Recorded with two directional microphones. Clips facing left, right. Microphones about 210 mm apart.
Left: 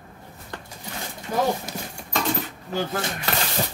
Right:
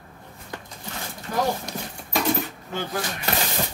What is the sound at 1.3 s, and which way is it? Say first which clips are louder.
Speech: left 2 dB; 20° left (ahead or behind).